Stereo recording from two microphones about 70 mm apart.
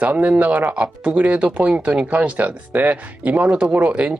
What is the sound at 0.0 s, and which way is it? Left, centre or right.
Speech, right.